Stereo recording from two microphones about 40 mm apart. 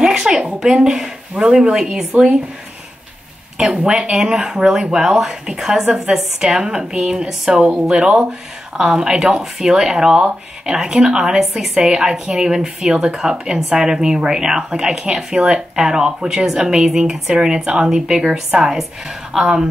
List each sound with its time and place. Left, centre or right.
0.0 s speech: centre
3.5 s speech: centre
7.2 s speech: centre